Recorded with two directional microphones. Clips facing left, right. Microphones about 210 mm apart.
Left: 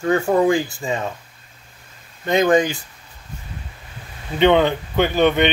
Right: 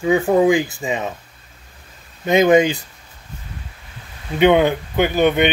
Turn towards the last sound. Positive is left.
turn(degrees=-10)  # may be behind; listen again after turning